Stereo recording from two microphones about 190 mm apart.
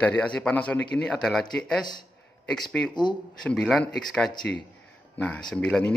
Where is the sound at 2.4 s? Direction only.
5° left (ahead or behind).